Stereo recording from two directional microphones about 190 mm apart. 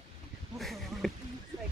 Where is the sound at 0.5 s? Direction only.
Centre (ahead or behind).